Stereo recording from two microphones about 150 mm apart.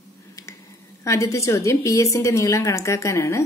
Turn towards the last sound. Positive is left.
turn(degrees=20)  # may be behind; listen again after turning